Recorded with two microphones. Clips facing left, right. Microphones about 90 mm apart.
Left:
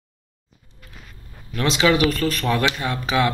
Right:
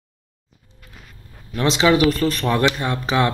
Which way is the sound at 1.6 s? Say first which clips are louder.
Right 2 dB; 25° right (ahead or behind).